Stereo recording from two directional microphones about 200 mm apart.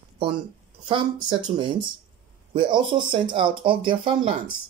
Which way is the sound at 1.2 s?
25° right (ahead or behind).